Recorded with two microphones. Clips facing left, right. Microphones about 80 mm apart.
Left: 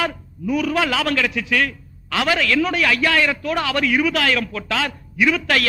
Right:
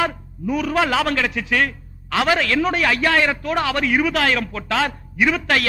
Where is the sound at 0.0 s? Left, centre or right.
Right.